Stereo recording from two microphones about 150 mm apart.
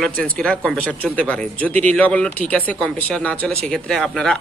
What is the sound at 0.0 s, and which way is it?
Speech, 5° left (ahead or behind).